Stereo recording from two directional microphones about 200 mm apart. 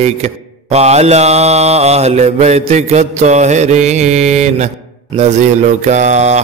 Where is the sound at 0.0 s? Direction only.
30° right (ahead or behind).